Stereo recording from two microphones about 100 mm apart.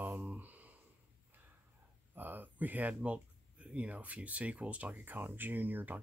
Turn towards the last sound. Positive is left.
turn(degrees=-20)  # may be behind; listen again after turning